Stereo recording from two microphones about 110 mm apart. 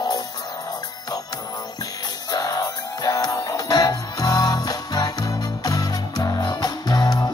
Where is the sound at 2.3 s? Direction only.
40° left (ahead or behind).